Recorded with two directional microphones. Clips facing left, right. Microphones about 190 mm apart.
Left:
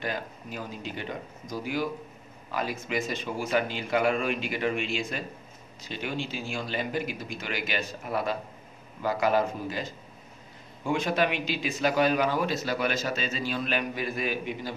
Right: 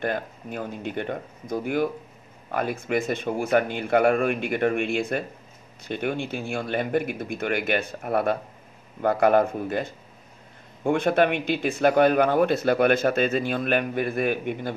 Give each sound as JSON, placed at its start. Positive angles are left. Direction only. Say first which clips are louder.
{"t": 0.0, "sound": "speech", "louder": "right 6 dB", "side_deg": -55}